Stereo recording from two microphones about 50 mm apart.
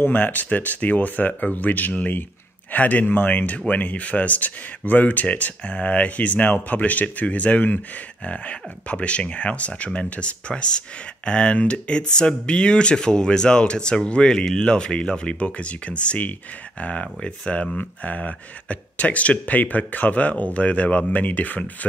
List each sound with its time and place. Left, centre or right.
0.0 s speech: left